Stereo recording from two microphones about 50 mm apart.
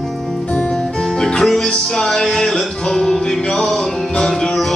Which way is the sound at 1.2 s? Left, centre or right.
Centre.